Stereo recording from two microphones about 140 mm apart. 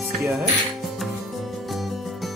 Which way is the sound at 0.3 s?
Centre (ahead or behind).